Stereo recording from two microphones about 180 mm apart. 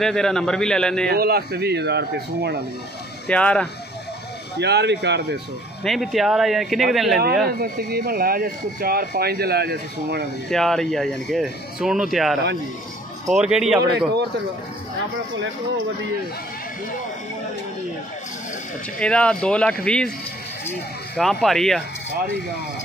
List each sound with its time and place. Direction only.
0.0 s speech: 5° left (ahead or behind)
1.1 s speech: 60° right (ahead or behind)
3.3 s speech: 5° left (ahead or behind)
4.6 s speech: 70° right (ahead or behind)
5.9 s speech: centre (ahead or behind)
7.4 s speech: 55° right (ahead or behind)
10.5 s speech: centre (ahead or behind)
18.9 s speech: 5° left (ahead or behind)
21.2 s speech: centre (ahead or behind)